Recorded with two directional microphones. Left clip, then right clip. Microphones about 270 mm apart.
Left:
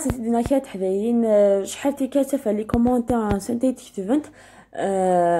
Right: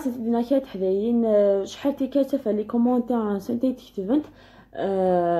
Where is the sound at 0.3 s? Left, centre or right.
Left.